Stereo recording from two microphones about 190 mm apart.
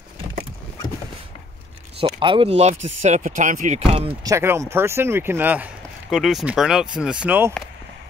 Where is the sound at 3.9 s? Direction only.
30° right (ahead or behind).